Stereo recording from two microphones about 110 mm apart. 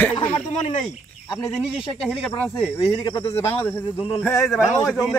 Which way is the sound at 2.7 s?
50° left (ahead or behind).